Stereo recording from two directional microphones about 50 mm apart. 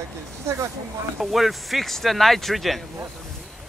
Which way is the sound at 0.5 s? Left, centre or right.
Right.